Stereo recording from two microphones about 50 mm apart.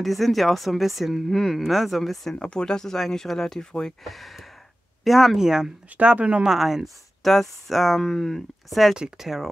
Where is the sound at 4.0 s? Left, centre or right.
Centre.